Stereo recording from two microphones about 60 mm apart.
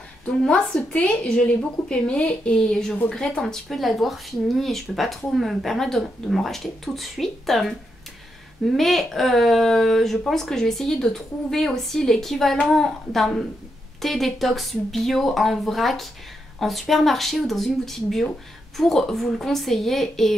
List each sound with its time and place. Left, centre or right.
0.5 s a woman's voice: centre